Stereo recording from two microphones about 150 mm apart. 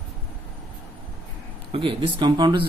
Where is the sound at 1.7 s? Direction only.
40° right (ahead or behind).